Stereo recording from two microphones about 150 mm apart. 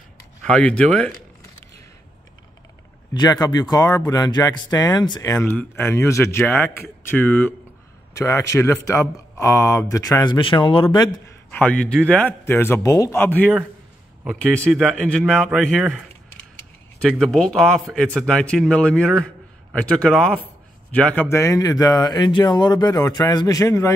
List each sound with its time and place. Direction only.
0.5 s speech: 5° left (ahead or behind)
3.1 s speech: 25° left (ahead or behind)
11.2 s a man's voice: 10° left (ahead or behind)
14.2 s a man's voice: centre (ahead or behind); by 23.9 s 20° left (ahead or behind)